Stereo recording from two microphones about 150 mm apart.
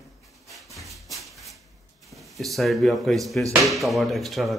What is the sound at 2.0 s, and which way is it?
Speech, centre (ahead or behind).